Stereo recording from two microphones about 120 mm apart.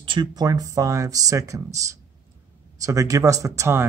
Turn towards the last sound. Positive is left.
turn(degrees=-25)  # may be behind; listen again after turning